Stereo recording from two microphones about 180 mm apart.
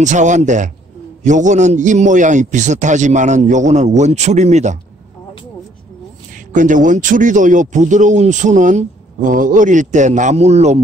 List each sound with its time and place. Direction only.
0.0 s a man's voice: 40° right (ahead or behind)
6.5 s speech: 45° right (ahead or behind)